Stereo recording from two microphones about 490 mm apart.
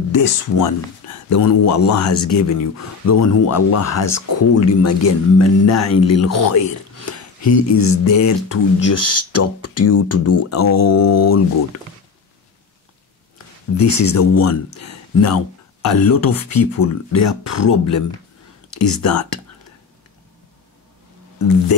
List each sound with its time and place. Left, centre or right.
0.1 s speech: left
13.8 s speech: left
21.4 s speech: left